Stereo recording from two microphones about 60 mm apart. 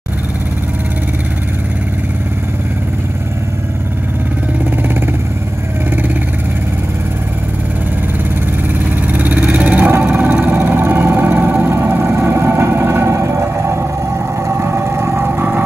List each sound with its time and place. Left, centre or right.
9.0 s vehicle: right